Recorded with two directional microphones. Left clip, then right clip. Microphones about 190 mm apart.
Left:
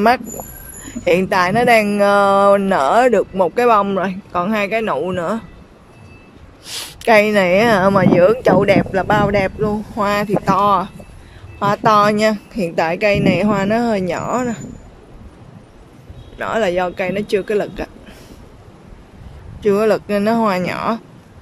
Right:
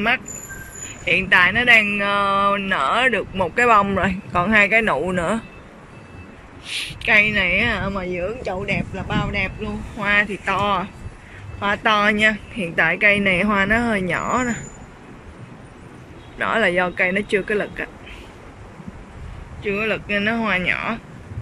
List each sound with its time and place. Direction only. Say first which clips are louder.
1.0 s speech: left 1 dB; 30° left (ahead or behind); by 5.4 s 10° left (ahead or behind)
6.6 s speech: left 3 dB; 30° left (ahead or behind); by 14.6 s 10° left (ahead or behind)
16.3 s speech: left 1 dB; 15° left (ahead or behind)
19.6 s speech: left 8 dB; 30° left (ahead or behind)